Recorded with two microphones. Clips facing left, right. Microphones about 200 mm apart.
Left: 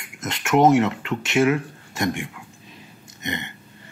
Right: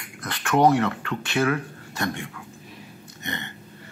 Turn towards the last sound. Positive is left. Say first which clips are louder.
# left 4 dB
turn(degrees=15)  # may be behind; listen again after turning